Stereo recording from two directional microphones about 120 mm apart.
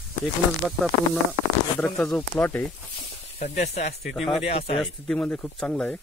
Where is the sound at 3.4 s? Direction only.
70° left (ahead or behind).